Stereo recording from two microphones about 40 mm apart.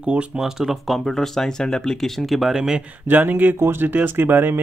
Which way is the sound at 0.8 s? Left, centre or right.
Centre.